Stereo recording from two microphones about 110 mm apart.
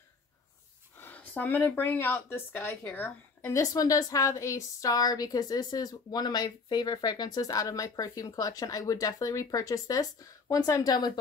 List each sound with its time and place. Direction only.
0.9 s speech: 15° left (ahead or behind)
3.5 s a woman's voice: 30° left (ahead or behind)